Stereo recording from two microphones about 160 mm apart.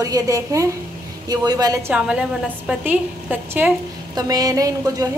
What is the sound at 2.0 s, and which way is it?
A woman's voice, 5° right (ahead or behind).